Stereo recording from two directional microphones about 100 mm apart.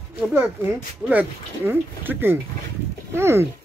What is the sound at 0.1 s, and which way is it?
Speech, 20° right (ahead or behind).